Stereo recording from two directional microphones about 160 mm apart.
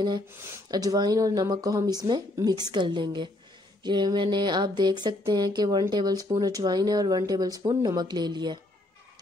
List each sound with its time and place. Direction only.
0.7 s speech: 25° right (ahead or behind)